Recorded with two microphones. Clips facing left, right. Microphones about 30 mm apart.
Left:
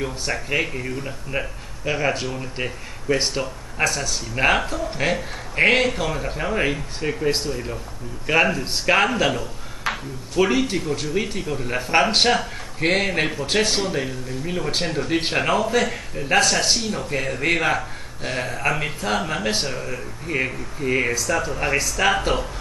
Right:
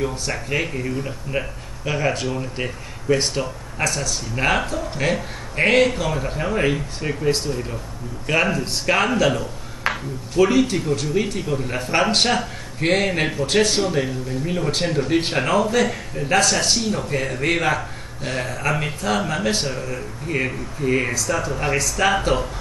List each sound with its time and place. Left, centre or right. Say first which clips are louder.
0.3 s a man's voice: left 1 dB; centre
3.8 s speech: left 1 dB; left
4.1 s a man's voice: left 1 dB; centre
10.3 s a man's voice: right 3 dB; centre